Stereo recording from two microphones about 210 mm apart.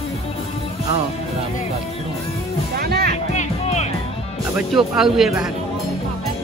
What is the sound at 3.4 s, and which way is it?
Music, 30° left (ahead or behind).